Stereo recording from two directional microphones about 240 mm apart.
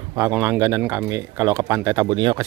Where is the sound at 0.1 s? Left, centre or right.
Centre.